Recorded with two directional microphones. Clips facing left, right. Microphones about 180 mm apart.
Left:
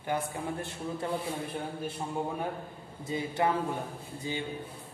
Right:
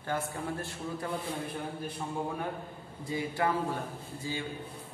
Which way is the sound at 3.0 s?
20° left (ahead or behind).